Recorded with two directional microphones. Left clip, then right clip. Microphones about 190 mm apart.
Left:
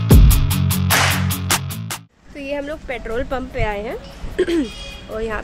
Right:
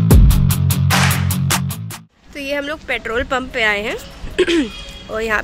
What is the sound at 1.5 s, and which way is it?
Music, centre (ahead or behind).